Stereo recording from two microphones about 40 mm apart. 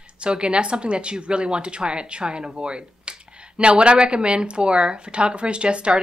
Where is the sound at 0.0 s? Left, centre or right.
Right.